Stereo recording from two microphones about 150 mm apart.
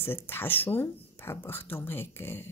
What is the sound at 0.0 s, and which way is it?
A woman's voice, 15° left (ahead or behind).